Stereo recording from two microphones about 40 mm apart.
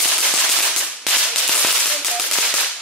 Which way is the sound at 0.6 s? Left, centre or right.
Centre.